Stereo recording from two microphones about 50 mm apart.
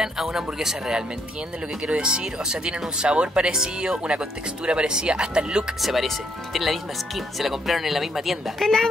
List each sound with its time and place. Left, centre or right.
0.0 s speech: centre
5.8 s speech: centre